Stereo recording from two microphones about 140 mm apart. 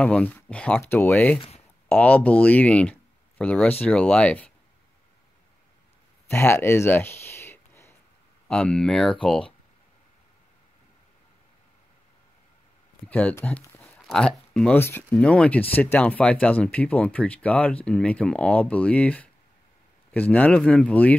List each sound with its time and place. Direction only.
0.0 s speech: 10° left (ahead or behind)
6.2 s speech: 15° left (ahead or behind)
8.5 s speech: 5° left (ahead or behind)
13.1 s speech: 10° left (ahead or behind)